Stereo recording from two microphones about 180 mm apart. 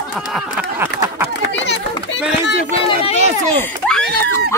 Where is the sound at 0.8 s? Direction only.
15° right (ahead or behind).